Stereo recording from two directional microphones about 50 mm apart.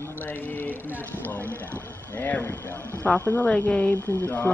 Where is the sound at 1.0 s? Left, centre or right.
Left.